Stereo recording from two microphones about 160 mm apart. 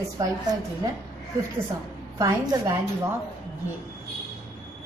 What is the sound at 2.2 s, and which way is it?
Speech, 20° right (ahead or behind).